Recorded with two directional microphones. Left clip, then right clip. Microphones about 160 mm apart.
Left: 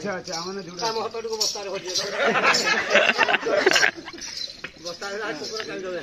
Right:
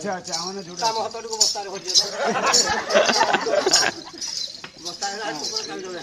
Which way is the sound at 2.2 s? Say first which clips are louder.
Left 2 dB; 50° left (ahead or behind).